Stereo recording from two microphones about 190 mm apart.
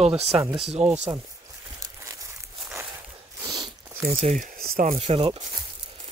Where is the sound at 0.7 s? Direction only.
35° right (ahead or behind).